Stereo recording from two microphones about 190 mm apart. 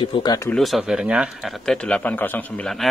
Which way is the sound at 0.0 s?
25° left (ahead or behind).